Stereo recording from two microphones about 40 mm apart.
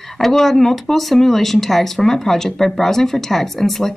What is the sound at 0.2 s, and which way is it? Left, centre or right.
A woman's voice, centre.